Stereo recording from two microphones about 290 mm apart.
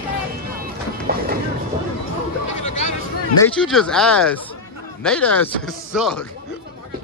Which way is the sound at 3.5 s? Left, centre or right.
Centre.